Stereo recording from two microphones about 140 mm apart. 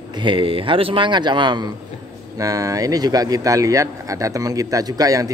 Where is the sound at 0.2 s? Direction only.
40° right (ahead or behind).